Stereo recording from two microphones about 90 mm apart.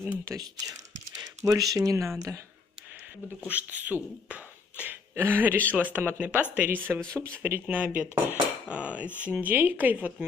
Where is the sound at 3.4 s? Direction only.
20° right (ahead or behind).